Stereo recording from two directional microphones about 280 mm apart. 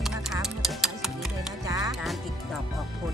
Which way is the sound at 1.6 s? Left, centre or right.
Centre.